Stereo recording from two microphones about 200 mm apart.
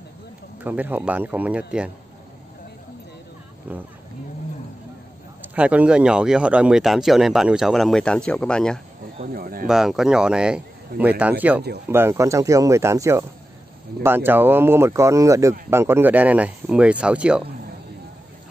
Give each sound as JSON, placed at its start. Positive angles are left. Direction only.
{"t": 0.7, "sound": "speech", "side_deg": -10}
{"t": 3.7, "sound": "speech", "side_deg": -10}
{"t": 5.4, "sound": "speech", "side_deg": -5}
{"t": 9.3, "sound": "speech", "side_deg": -45}
{"t": 9.7, "sound": "speech", "side_deg": 0}